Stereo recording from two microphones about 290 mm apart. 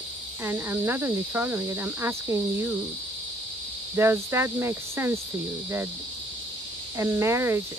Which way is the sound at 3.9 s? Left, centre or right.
Centre.